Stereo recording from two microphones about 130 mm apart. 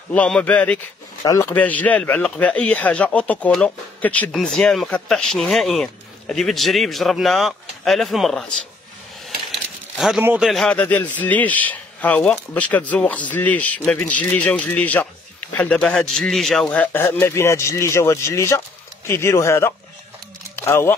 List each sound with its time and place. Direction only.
0.1 s a man's voice: 10° left (ahead or behind)
1.2 s speech: 25° left (ahead or behind)
1.5 s a man's voice: 10° left (ahead or behind)
9.2 s a sound: centre (ahead or behind)
10.4 s a man's voice: centre (ahead or behind); by 20.9 s 20° left (ahead or behind)